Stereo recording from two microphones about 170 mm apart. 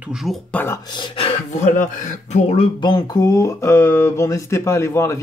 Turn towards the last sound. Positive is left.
turn(degrees=15)  # may be behind; listen again after turning